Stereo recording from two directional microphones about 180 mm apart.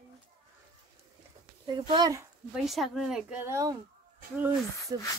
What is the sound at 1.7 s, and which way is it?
Speech, 25° right (ahead or behind).